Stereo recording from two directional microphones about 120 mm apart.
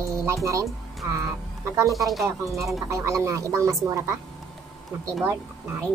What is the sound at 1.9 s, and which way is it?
Speech, centre (ahead or behind).